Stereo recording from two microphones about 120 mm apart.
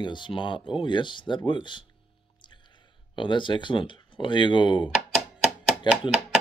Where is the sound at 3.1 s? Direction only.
40° left (ahead or behind).